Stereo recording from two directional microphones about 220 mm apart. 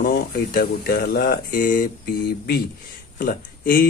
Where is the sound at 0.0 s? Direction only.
40° left (ahead or behind).